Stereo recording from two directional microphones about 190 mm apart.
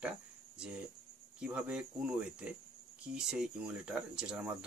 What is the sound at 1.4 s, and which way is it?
Speech, 5° right (ahead or behind).